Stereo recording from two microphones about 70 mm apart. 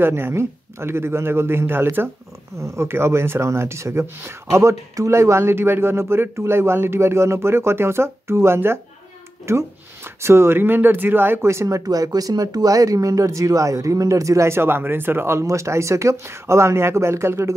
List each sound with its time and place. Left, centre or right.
0.0 s speech: right
11.7 s speech: right